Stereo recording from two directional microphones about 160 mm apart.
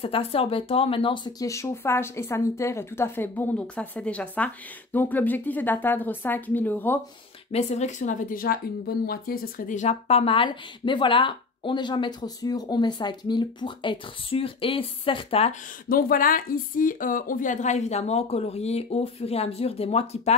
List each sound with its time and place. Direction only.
0.0 s speech: 40° left (ahead or behind); by 7.0 s 10° left (ahead or behind)
7.5 s speech: 45° left (ahead or behind)
15.9 s speech: 65° left (ahead or behind); by 20.3 s 40° left (ahead or behind)